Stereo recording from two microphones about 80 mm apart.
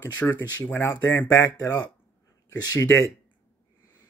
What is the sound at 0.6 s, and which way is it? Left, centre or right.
Speech, left.